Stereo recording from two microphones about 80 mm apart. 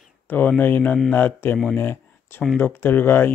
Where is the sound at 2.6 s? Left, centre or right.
Left.